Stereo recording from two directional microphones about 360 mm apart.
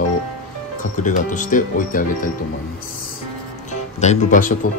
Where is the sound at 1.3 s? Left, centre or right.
Left.